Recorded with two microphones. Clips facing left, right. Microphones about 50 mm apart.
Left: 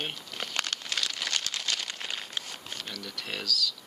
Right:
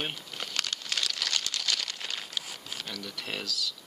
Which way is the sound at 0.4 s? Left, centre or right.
Left.